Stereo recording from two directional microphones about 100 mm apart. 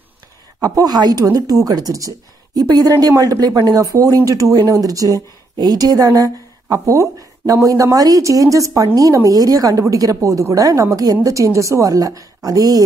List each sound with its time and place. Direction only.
0.6 s a woman's voice: 40° right (ahead or behind)